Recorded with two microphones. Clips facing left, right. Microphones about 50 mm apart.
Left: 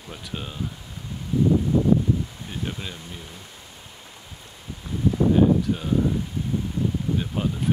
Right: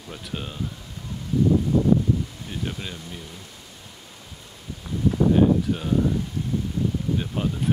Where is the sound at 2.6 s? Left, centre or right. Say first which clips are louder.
Even; centre.